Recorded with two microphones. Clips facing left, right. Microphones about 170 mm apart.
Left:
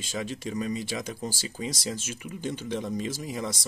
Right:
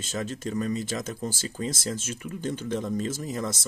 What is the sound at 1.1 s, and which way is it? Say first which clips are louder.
Speech: right 2 dB; 50° right (ahead or behind).